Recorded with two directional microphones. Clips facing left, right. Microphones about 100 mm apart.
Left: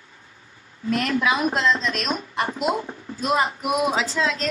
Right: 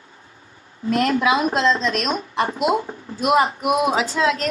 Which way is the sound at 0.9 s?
25° right (ahead or behind).